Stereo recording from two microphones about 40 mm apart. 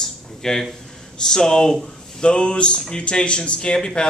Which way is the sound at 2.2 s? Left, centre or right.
Left.